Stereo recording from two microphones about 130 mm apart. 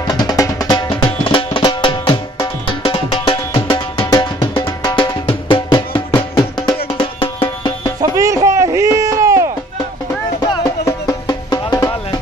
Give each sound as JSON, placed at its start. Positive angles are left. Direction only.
{"t": 0.0, "sound": "music", "side_deg": 30}
{"t": 7.2, "sound": "music", "side_deg": 40}
{"t": 8.2, "sound": "chop", "side_deg": -25}
{"t": 10.6, "sound": "music", "side_deg": 25}